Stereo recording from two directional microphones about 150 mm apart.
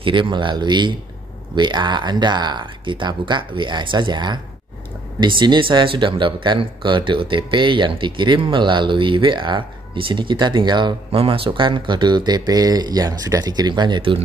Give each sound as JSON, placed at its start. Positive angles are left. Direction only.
{"t": 0.0, "sound": "speech", "side_deg": -35}